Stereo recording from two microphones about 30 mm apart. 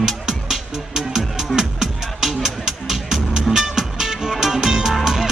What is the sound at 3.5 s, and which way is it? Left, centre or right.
Music, centre.